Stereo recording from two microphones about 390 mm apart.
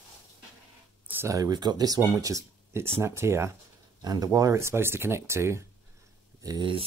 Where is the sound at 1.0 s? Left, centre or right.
Centre.